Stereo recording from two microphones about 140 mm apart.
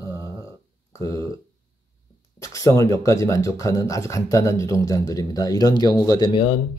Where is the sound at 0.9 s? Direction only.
25° left (ahead or behind).